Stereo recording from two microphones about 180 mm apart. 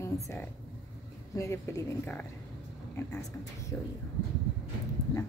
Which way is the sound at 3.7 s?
10° left (ahead or behind).